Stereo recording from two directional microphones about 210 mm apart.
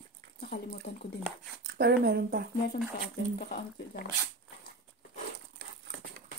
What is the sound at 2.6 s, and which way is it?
Speech, 45° left (ahead or behind).